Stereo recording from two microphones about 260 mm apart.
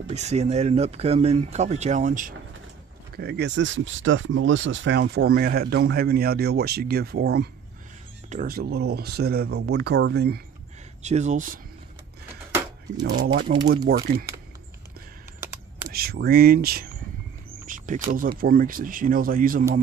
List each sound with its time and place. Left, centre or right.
0.1 s speech: right
11.0 s speech: right
13.0 s speech: right
15.9 s speech: right
17.6 s cricket: right
18.4 s speech: right